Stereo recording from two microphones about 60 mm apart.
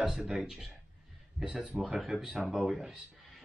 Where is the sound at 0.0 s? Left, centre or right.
Centre.